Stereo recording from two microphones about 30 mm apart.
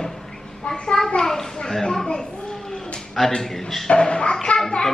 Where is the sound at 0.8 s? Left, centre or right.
Left.